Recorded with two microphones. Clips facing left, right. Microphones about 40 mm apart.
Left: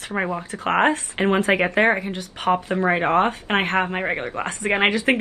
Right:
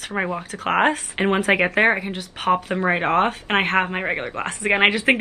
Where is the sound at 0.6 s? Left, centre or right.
Centre.